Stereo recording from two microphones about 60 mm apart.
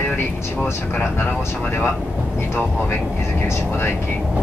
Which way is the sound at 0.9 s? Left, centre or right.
Left.